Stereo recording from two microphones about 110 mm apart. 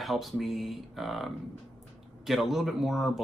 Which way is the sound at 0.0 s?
Centre (ahead or behind).